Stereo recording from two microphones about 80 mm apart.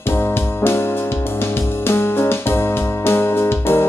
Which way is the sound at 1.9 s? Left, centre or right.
Left.